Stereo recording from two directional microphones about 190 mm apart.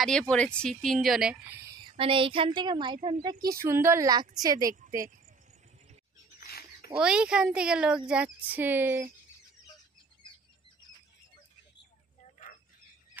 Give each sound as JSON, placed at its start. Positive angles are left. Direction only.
{"t": 0.0, "sound": "a woman's voice", "side_deg": 5}
{"t": 3.5, "sound": "a woman's voice", "side_deg": -15}
{"t": 6.4, "sound": "a sound", "side_deg": 55}
{"t": 7.0, "sound": "a woman's voice", "side_deg": -5}